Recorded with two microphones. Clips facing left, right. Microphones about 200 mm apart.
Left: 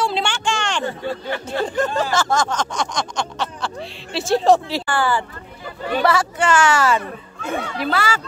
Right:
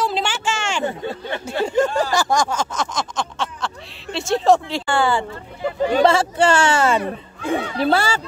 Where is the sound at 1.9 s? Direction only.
15° right (ahead or behind).